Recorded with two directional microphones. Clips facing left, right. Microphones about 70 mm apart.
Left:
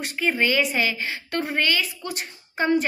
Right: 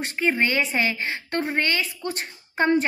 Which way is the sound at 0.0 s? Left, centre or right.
Right.